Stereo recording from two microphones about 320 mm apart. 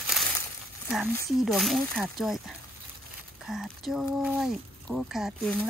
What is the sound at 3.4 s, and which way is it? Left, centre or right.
Speech, centre.